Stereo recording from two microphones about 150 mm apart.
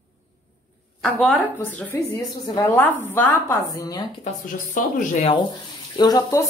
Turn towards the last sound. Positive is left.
turn(degrees=25)  # may be behind; listen again after turning